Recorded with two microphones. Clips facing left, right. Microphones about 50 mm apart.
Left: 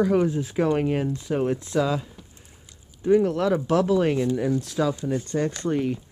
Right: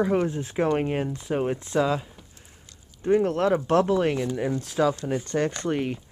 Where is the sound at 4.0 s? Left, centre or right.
Centre.